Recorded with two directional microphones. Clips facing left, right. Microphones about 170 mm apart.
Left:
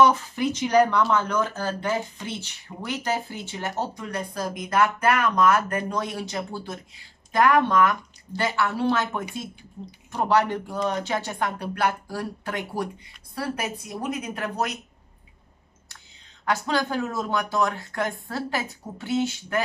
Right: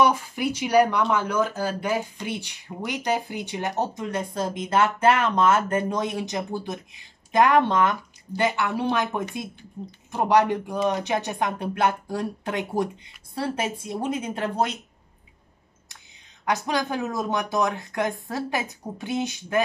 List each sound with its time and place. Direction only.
0.0 s speech: 10° right (ahead or behind); by 14.8 s 25° right (ahead or behind)
16.4 s speech: 15° right (ahead or behind)